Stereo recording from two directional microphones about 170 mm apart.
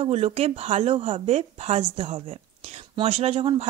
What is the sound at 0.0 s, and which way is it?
Speech, 35° right (ahead or behind).